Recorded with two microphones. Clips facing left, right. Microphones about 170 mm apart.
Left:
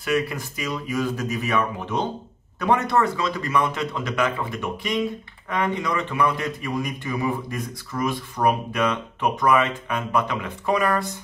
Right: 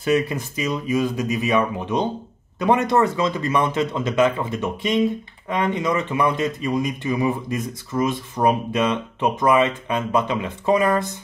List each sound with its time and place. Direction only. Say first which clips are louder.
0.0 s speech: right 4 dB; 25° right (ahead or behind)